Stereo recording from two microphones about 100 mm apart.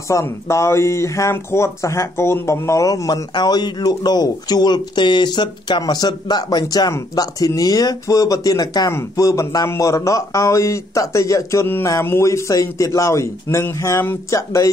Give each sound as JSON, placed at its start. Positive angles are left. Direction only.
{"t": 0.1, "sound": "a man's voice", "side_deg": 30}